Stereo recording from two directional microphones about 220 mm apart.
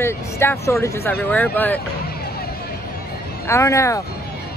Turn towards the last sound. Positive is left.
turn(degrees=15)  # may be behind; listen again after turning